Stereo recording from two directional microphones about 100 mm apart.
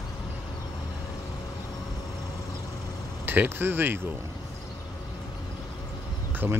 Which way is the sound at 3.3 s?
20° right (ahead or behind).